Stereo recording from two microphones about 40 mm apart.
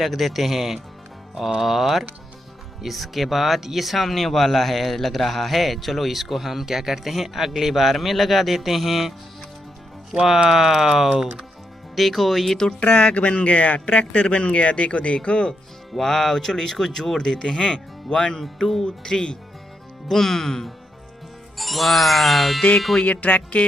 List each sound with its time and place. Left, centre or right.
0.0 s speech: centre
10.1 s speech: centre
12.8 s speech: left
15.9 s speech: centre
23.0 s speech: left